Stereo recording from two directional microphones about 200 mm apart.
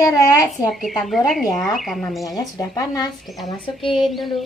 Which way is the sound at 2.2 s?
15° left (ahead or behind).